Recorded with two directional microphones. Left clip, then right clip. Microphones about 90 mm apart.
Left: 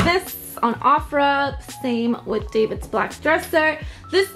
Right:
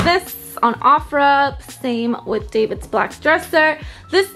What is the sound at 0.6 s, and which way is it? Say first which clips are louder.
Speech: right 4 dB; 15° right (ahead or behind).